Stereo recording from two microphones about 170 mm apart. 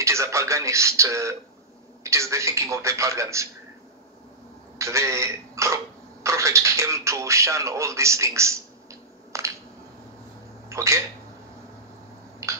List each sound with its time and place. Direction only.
0.0 s speech: 15° right (ahead or behind)
4.7 s speech: 15° right (ahead or behind)
10.7 s speech: 15° right (ahead or behind)
12.4 s a sound: 20° right (ahead or behind)